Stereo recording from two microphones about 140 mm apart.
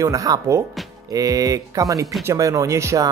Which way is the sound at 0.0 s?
25° right (ahead or behind).